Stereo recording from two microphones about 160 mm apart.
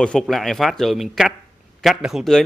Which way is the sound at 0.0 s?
5° left (ahead or behind).